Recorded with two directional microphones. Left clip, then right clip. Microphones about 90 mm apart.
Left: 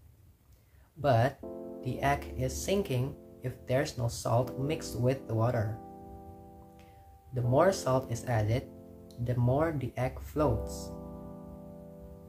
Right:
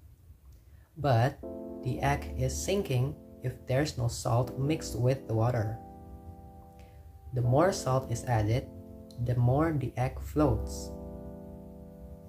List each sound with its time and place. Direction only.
1.0 s speech: 15° left (ahead or behind)
1.4 s music: 5° right (ahead or behind)
1.8 s speech: 20° left (ahead or behind)
7.3 s speech: 20° left (ahead or behind)
11.0 s music: centre (ahead or behind)